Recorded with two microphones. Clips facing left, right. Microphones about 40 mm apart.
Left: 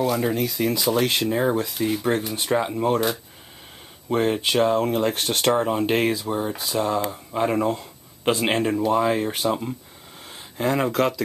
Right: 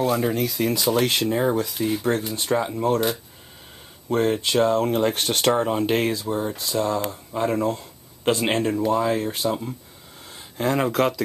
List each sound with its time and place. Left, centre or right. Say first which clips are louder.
0.2 s speech: even; centre
2.0 s speech: even; left
4.1 s speech: even; centre
6.1 s speech: even; centre
8.3 s speech: even; centre
9.0 s speech: left 1 dB; left
10.6 s speech: even; centre